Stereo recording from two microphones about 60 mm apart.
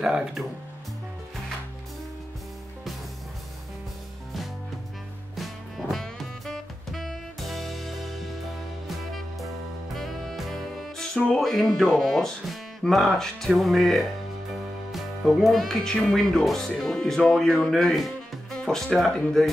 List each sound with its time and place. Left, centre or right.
0.0 s speech: centre
5.3 s music: centre
11.3 s speech: centre